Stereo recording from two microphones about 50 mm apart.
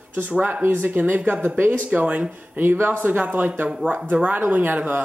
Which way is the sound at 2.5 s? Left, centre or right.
Right.